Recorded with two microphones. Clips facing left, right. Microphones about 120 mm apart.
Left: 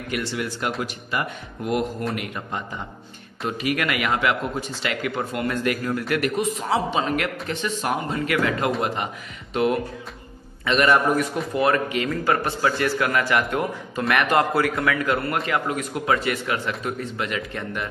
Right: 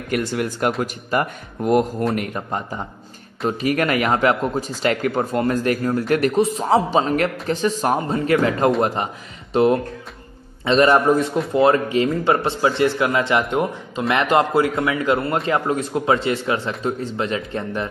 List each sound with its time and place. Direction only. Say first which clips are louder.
0.1 s a man's voice: right 5 dB; 45° right (ahead or behind); by 17.8 s 30° right (ahead or behind)